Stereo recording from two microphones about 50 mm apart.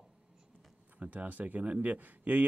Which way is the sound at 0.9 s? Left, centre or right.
Right.